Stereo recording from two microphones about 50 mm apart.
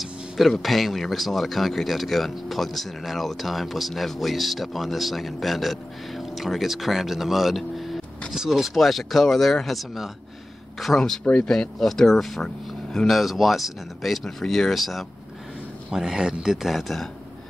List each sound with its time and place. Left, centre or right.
0.0 s speech: centre
11.3 s speech: centre
11.8 s speech: centre
15.9 s speech: centre
16.6 s speech: centre